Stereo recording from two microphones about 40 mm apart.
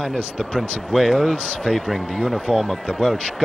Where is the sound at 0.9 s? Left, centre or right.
Centre.